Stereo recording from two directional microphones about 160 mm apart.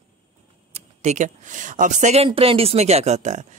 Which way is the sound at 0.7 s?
45° right (ahead or behind).